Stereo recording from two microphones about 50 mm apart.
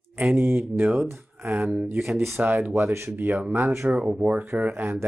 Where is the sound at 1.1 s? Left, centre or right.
Right.